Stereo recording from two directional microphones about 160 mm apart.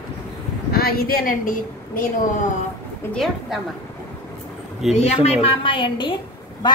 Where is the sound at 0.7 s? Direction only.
75° left (ahead or behind).